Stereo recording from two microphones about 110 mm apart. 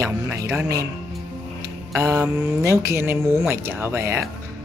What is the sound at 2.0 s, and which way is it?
Speech, 25° right (ahead or behind).